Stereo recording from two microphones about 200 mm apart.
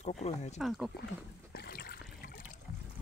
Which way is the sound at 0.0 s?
35° left (ahead or behind).